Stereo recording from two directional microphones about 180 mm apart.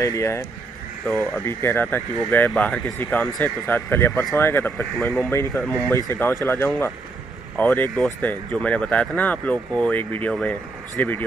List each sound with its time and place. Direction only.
0.0 s speech: 15° left (ahead or behind)